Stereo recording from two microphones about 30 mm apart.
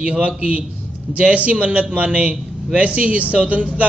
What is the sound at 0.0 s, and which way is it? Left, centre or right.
A man's voice, right.